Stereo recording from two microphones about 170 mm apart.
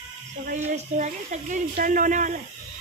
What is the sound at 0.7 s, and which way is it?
Speech, 45° right (ahead or behind).